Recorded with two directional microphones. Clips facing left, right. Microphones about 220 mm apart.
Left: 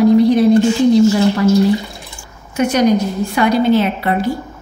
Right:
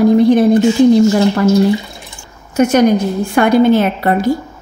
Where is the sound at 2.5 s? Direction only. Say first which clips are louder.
Right 3 dB; 45° right (ahead or behind).